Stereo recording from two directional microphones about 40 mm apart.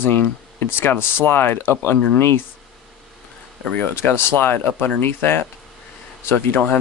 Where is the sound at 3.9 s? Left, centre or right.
Left.